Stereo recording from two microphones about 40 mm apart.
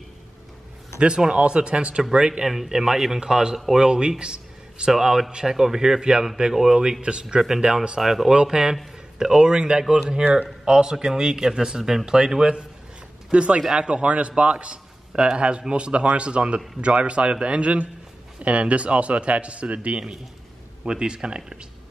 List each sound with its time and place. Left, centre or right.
0.9 s speech: right
2.4 s speech: centre
4.2 s a sound: right
4.9 s speech: centre
7.0 s speech: right
7.3 s speech: centre
8.0 s speech: centre
8.3 s speech: right
13.3 s a man's voice: right